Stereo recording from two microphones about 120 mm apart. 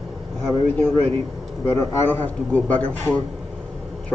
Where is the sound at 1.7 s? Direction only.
20° left (ahead or behind).